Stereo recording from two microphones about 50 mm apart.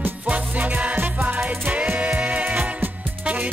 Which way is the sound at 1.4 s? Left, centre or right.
Right.